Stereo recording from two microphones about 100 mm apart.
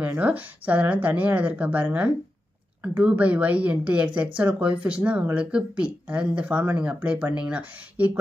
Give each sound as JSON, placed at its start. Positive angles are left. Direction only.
{"t": 0.0, "sound": "speech", "side_deg": -15}